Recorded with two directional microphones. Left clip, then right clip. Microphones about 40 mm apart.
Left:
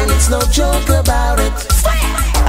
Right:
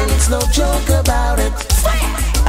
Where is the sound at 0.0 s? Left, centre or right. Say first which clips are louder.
Left 2 dB; centre.